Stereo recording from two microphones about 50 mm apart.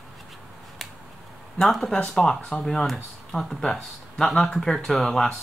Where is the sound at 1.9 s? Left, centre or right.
Centre.